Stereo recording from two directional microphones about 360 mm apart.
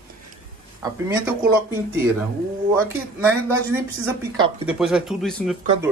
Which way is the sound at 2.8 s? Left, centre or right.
Centre.